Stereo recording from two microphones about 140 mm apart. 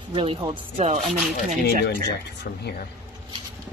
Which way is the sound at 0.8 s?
50° right (ahead or behind).